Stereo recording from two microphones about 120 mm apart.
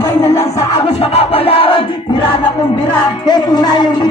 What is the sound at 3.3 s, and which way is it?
Speech, 35° left (ahead or behind).